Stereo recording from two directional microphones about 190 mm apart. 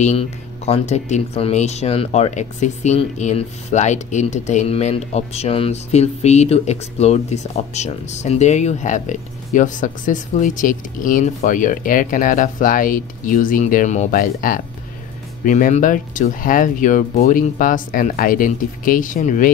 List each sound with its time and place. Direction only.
0.0 s speech: 35° left (ahead or behind)